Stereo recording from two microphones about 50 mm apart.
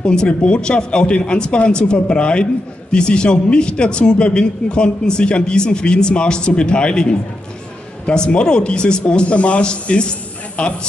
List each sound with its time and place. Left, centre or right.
0.0 s a man's voice: centre